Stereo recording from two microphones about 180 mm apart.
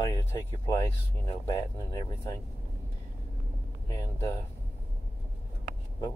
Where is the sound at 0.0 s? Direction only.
15° left (ahead or behind).